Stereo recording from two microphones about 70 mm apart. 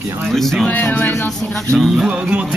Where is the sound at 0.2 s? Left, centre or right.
Centre.